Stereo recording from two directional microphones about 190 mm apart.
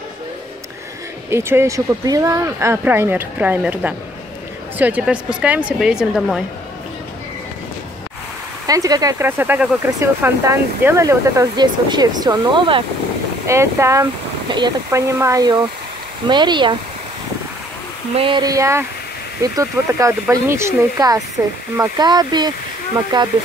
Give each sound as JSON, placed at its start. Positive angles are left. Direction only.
{"t": 1.3, "sound": "speech", "side_deg": -15}
{"t": 8.6, "sound": "speech", "side_deg": -20}
{"t": 13.5, "sound": "speech", "side_deg": -15}
{"t": 18.1, "sound": "speech", "side_deg": -25}